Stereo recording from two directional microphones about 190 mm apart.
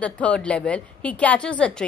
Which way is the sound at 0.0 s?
5° left (ahead or behind).